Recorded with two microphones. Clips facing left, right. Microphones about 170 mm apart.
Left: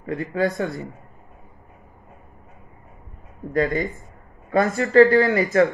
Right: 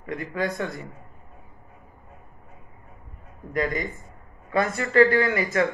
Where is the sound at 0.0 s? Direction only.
30° left (ahead or behind).